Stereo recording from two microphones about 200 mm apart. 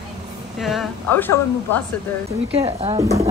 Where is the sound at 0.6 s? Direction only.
Centre (ahead or behind).